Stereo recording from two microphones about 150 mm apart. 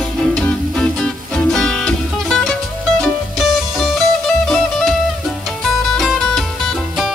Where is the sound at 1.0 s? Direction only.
5° left (ahead or behind).